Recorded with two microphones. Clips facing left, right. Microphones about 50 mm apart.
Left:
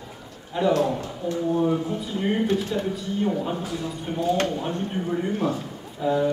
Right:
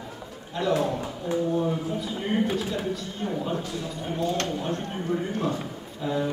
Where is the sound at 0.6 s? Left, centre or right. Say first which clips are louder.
Left 3 dB; centre.